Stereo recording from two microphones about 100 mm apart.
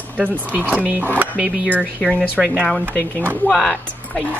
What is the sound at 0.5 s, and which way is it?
A woman's voice, 15° right (ahead or behind).